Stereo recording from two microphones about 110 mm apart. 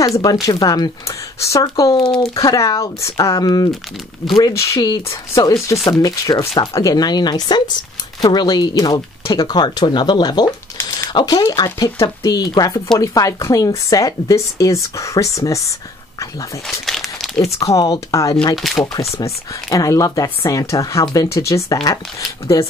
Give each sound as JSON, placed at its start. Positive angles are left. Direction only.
{"t": 0.0, "sound": "speech", "side_deg": 35}
{"t": 2.0, "sound": "speech", "side_deg": 50}
{"t": 2.3, "sound": "speech", "side_deg": 30}
{"t": 4.2, "sound": "speech", "side_deg": 25}
{"t": 16.6, "sound": "crumpling", "side_deg": 0}
{"t": 17.7, "sound": "speech", "side_deg": 30}
{"t": 18.6, "sound": "speech", "side_deg": 0}
{"t": 19.2, "sound": "speech", "side_deg": 30}